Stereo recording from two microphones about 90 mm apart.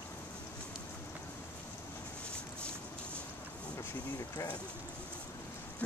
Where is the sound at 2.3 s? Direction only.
25° right (ahead or behind).